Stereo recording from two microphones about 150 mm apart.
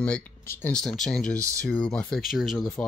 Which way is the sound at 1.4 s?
20° right (ahead or behind).